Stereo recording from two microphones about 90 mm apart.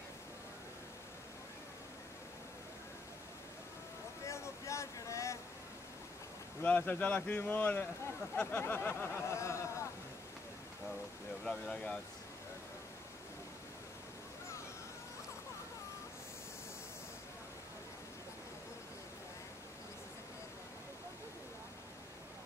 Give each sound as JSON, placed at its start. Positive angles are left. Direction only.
{"t": 4.3, "sound": "a sound", "side_deg": 35}
{"t": 6.6, "sound": "speech", "side_deg": 20}
{"t": 11.4, "sound": "speech", "side_deg": 5}